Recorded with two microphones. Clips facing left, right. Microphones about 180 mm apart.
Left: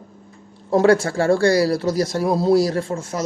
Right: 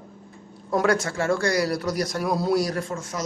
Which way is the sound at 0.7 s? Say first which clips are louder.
Left 7 dB; 30° left (ahead or behind).